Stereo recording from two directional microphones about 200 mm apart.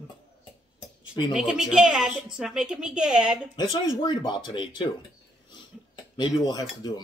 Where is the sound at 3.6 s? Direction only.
20° left (ahead or behind).